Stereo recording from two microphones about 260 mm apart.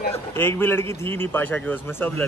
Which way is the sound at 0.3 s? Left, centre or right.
Centre.